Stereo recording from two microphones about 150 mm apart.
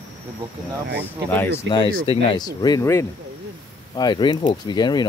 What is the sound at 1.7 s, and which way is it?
Speech, 30° left (ahead or behind).